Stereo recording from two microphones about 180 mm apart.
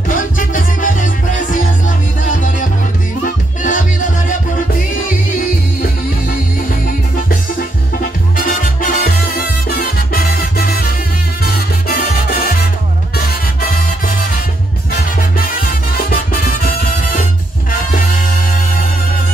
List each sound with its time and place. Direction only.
0.1 s music: 50° left (ahead or behind)
8.0 s salsa music: 50° left (ahead or behind)
11.4 s music: 55° left (ahead or behind)
15.3 s music: 55° left (ahead or behind)